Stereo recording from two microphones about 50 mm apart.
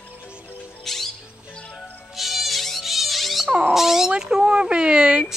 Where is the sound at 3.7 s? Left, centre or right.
Centre.